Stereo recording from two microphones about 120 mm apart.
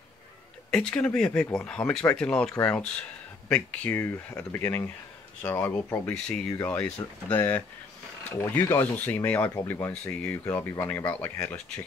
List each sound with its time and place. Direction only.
0.7 s speech: 5° left (ahead or behind)
6.1 s speech: 5° left (ahead or behind); by 8.8 s 25° left (ahead or behind)
8.9 s speech: 15° left (ahead or behind)